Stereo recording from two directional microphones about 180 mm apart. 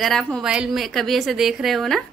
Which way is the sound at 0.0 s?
5° left (ahead or behind).